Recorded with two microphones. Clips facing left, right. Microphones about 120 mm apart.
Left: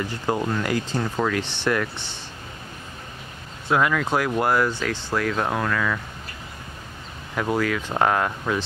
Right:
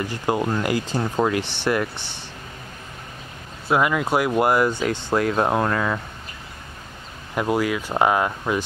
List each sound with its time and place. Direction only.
0.5 s speech: 15° right (ahead or behind)
3.6 s speech: 10° right (ahead or behind)
5.1 s speech: 30° right (ahead or behind)
7.3 s speech: 10° right (ahead or behind)